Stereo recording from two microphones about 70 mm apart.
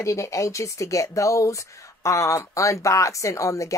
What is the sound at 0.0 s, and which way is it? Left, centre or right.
A woman's voice, left.